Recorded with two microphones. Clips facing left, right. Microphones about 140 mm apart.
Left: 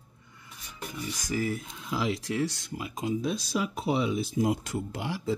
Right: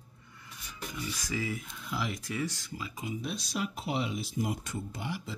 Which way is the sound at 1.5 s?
80° left.